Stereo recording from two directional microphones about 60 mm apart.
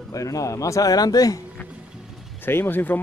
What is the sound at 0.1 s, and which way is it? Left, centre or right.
A man's voice, left.